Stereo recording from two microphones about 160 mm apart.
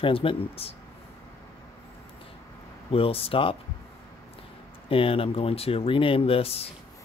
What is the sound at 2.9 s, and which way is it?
Speech, 35° left (ahead or behind).